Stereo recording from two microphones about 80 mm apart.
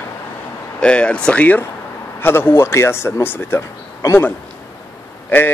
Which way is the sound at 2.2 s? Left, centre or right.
Left.